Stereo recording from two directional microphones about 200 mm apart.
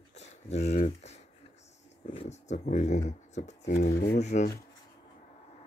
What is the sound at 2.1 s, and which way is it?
Speech, 35° left (ahead or behind).